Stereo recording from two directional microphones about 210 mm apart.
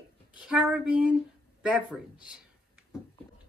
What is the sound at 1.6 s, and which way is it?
Speech, 5° right (ahead or behind).